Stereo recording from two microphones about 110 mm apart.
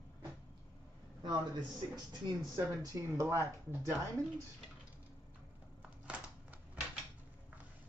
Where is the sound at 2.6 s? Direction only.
30° right (ahead or behind).